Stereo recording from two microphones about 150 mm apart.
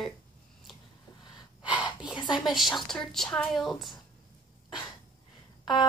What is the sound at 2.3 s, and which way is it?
A woman's voice, centre (ahead or behind).